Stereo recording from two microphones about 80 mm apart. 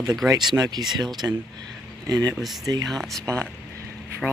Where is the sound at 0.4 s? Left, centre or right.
Right.